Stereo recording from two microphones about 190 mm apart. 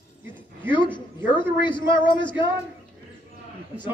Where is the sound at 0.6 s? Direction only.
25° left (ahead or behind).